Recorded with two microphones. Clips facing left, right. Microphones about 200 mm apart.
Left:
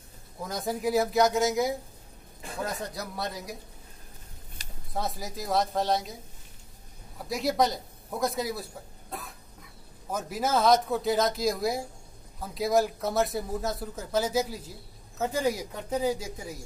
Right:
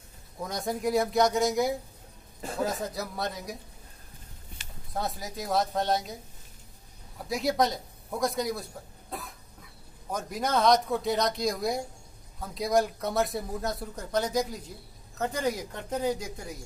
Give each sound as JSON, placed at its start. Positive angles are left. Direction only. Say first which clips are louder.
{"t": 0.4, "sound": "speech", "louder": "even", "side_deg": 0}
{"t": 4.6, "sound": "a sound", "louder": "left 1 dB", "side_deg": 40}
{"t": 4.9, "sound": "speech", "louder": "even", "side_deg": 0}
{"t": 7.2, "sound": "speech", "louder": "even", "side_deg": 0}
{"t": 10.1, "sound": "speech", "louder": "left 1 dB", "side_deg": 5}